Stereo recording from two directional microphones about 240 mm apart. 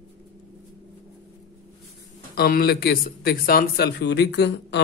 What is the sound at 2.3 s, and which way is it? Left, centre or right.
Speech, left.